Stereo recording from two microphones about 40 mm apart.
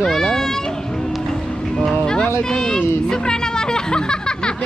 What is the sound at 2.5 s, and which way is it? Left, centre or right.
Speech, centre.